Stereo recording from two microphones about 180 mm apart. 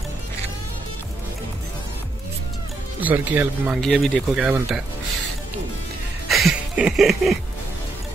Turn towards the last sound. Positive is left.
turn(degrees=0)  # may be behind; listen again after turning